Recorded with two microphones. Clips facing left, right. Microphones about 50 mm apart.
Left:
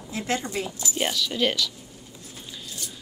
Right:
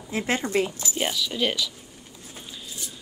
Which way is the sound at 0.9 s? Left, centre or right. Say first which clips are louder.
Left 2 dB; centre.